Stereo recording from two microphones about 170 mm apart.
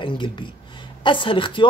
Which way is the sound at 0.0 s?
30° left (ahead or behind).